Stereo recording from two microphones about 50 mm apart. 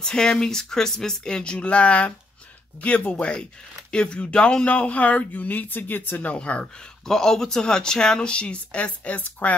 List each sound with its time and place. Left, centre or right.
0.0 s speech: centre; by 6.2 s left
6.2 s speech: left
7.1 s speech: centre; by 9.5 s left